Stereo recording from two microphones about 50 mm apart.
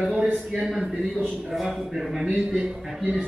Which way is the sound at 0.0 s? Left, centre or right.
Centre.